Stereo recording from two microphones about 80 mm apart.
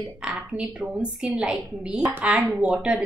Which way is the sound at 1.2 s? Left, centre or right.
Centre.